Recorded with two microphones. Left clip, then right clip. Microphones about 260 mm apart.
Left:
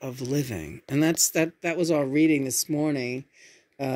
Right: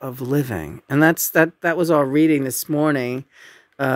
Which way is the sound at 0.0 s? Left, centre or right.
Right.